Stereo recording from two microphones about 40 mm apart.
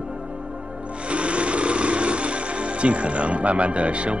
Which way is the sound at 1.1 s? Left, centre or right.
Right.